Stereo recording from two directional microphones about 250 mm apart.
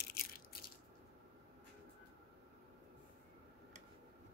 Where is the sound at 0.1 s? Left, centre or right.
Left.